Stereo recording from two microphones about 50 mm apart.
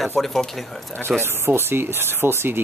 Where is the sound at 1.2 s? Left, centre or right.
Right.